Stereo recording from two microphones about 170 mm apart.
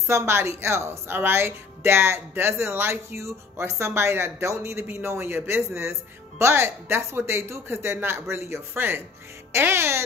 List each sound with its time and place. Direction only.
0.0 s a woman's voice: 15° right (ahead or behind)